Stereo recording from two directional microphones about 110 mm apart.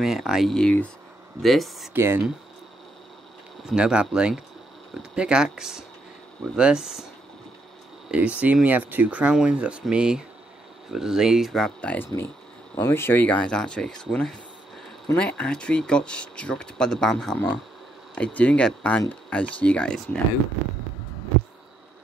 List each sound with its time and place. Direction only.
0.0 s speech: centre (ahead or behind)
2.0 s speech: 20° right (ahead or behind)
3.6 s speech: 10° right (ahead or behind)
8.1 s speech: 10° right (ahead or behind); by 20.2 s 5° left (ahead or behind)